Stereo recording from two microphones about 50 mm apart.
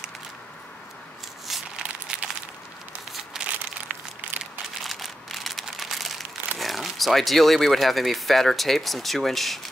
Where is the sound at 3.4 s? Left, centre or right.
Right.